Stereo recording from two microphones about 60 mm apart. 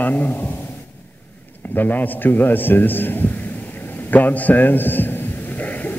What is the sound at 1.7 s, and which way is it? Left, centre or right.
A man's voice, left.